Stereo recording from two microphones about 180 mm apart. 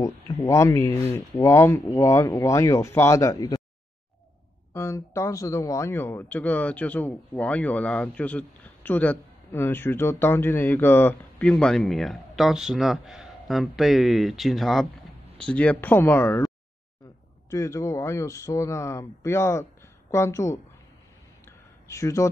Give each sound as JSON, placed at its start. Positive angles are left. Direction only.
{"t": 0.0, "sound": "speech", "side_deg": 15}
{"t": 4.7, "sound": "speech", "side_deg": 15}
{"t": 17.5, "sound": "speech", "side_deg": 15}
{"t": 21.5, "sound": "a sound", "side_deg": 15}